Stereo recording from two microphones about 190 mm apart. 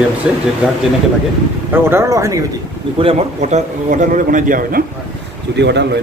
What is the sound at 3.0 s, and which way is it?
A man's voice, 35° right (ahead or behind).